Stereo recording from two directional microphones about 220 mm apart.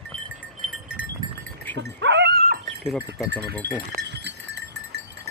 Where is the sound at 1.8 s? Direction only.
55° right (ahead or behind).